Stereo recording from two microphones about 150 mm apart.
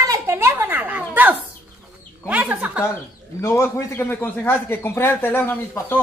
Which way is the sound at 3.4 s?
20° left (ahead or behind).